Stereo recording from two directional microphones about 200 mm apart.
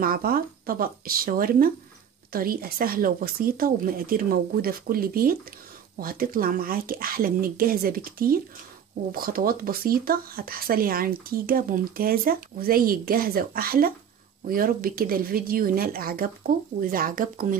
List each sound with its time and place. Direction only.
0.0 s speech: 45° right (ahead or behind)